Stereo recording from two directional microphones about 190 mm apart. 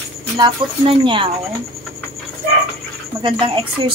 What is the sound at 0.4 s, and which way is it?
Speech, 25° right (ahead or behind).